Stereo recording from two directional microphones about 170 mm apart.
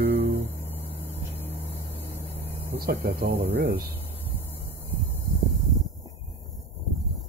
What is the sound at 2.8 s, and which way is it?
Speech, 60° right (ahead or behind).